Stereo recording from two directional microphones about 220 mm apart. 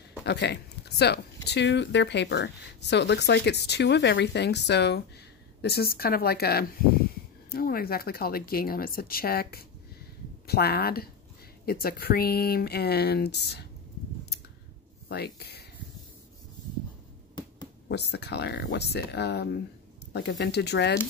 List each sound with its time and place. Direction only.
0.2 s speech: 50° left (ahead or behind)
15.0 s speech: 45° left (ahead or behind)
17.8 s speech: 50° left (ahead or behind)